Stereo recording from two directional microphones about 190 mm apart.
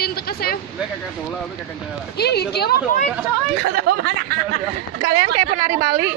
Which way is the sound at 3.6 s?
60° right (ahead or behind).